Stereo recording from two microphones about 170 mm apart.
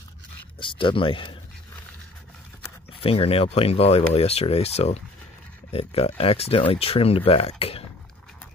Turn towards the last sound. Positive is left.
turn(degrees=35)  # may be behind; listen again after turning